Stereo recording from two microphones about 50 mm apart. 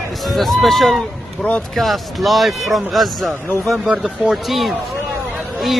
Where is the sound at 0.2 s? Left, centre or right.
Centre.